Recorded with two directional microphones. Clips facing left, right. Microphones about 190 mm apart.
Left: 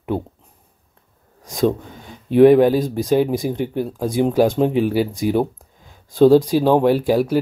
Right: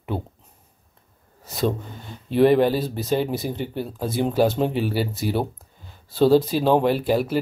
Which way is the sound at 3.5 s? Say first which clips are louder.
Left 6 dB; 50° left (ahead or behind).